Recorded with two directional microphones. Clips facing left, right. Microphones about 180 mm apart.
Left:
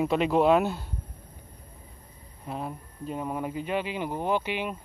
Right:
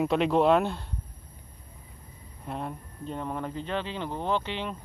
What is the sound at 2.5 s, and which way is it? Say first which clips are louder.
Speech: even; 5° left (ahead or behind).